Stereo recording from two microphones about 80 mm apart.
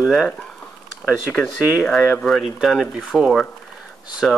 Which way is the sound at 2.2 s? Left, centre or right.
Centre.